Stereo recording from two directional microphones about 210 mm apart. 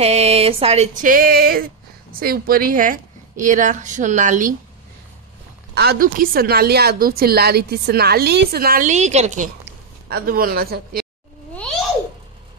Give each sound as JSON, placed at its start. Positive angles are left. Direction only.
{"t": 0.0, "sound": "speech", "side_deg": -30}
{"t": 1.0, "sound": "a woman's voice", "side_deg": -45}
{"t": 5.8, "sound": "a woman's voice", "side_deg": -45}
{"t": 10.0, "sound": "a woman's voice", "side_deg": -45}